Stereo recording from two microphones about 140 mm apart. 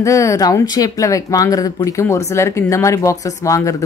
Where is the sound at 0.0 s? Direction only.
20° left (ahead or behind).